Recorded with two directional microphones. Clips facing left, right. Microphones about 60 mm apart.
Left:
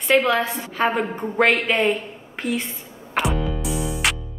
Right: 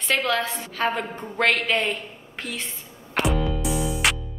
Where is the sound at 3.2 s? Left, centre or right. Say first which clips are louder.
Even; centre.